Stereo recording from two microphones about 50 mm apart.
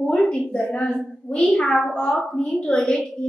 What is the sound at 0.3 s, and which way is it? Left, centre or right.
A woman's voice, left.